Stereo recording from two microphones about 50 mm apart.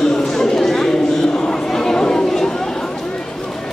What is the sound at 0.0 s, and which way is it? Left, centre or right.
Chatter, centre.